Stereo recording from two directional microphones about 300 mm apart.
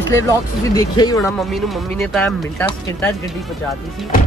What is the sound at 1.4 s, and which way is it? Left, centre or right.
Speech, centre.